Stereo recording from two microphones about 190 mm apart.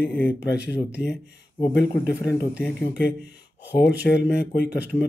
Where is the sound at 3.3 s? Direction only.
60° left (ahead or behind).